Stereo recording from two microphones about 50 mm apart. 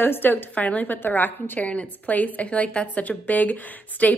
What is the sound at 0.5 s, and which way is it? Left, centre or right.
Speech, left.